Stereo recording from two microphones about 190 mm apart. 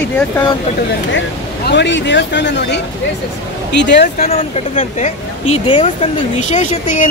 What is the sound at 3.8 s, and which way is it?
Speech, 65° left (ahead or behind).